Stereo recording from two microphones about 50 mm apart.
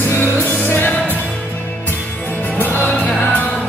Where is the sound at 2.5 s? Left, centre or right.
Left.